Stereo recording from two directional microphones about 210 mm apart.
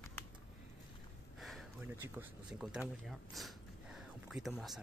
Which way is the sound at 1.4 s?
Centre (ahead or behind).